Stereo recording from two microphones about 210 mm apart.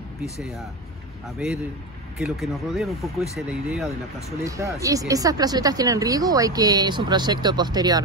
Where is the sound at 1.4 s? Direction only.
5° right (ahead or behind).